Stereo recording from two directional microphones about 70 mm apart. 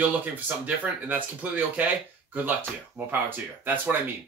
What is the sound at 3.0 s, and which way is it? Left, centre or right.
Speech, right.